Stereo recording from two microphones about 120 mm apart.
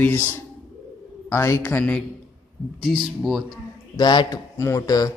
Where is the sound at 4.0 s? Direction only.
35° left (ahead or behind).